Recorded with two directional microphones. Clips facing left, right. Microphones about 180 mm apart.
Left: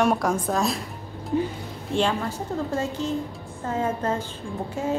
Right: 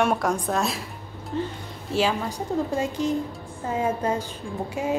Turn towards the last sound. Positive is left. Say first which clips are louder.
# even
turn(degrees=-15)  # may be behind; listen again after turning